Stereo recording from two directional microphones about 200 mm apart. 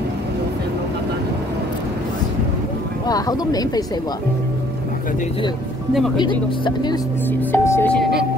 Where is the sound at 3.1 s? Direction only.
20° left (ahead or behind).